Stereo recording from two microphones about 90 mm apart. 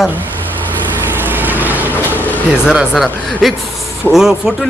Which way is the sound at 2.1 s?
20° left (ahead or behind).